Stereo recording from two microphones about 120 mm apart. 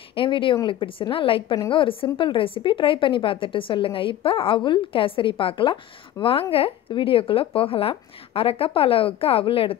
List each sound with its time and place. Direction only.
0.1 s a woman's voice: 45° left (ahead or behind)